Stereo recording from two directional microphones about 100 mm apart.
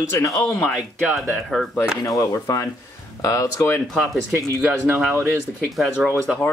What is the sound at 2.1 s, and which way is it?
Speech, 35° left (ahead or behind).